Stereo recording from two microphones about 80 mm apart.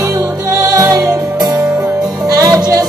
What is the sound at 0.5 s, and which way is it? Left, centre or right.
Music, right.